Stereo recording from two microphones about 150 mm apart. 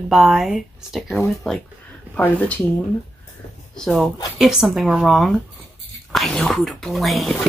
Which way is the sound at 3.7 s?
Centre (ahead or behind).